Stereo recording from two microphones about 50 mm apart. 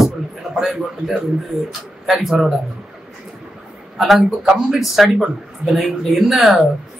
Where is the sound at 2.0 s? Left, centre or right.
Centre.